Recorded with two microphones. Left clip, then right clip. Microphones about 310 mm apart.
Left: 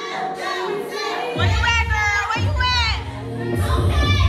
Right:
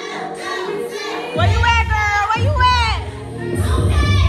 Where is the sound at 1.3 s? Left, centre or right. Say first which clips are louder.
Right 5 dB; centre.